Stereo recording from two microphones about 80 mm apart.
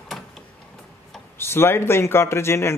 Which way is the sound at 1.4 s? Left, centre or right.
Left.